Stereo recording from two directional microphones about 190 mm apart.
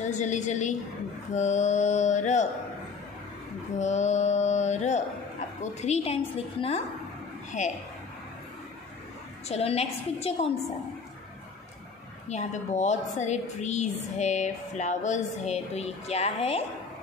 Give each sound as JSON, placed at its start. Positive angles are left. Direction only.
{"t": 0.0, "sound": "a woman's voice", "side_deg": 40}
{"t": 3.7, "sound": "a woman's voice", "side_deg": 40}
{"t": 9.5, "sound": "a woman's voice", "side_deg": 35}
{"t": 12.3, "sound": "a woman's voice", "side_deg": 40}